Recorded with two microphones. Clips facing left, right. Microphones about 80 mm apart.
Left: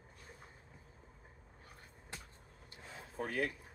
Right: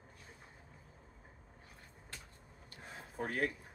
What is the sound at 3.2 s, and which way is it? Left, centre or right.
Speech, right.